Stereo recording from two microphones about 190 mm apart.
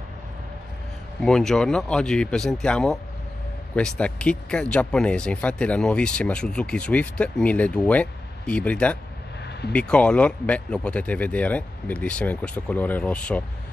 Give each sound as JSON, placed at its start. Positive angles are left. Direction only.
{"t": 1.2, "sound": "speech", "side_deg": 0}
{"t": 9.4, "sound": "a sound", "side_deg": 60}
{"t": 9.7, "sound": "speech", "side_deg": 5}